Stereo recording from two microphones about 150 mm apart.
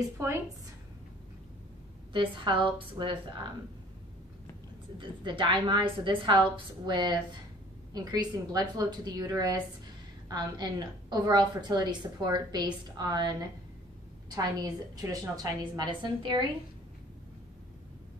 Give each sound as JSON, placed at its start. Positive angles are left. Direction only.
{"t": 2.1, "sound": "a woman's voice", "side_deg": -35}
{"t": 4.9, "sound": "a woman's voice", "side_deg": -35}